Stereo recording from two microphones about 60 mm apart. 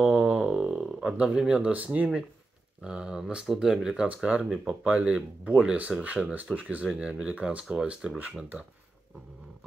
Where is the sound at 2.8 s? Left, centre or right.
Centre.